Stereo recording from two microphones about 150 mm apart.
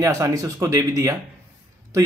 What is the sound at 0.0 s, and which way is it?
Speech, 20° right (ahead or behind).